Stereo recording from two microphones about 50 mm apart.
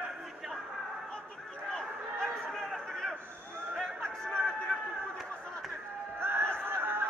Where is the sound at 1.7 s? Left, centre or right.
Centre.